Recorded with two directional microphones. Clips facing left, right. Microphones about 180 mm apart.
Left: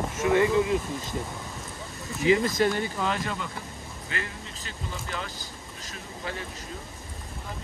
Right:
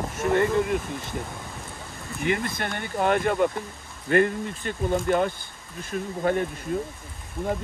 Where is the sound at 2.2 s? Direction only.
55° right (ahead or behind).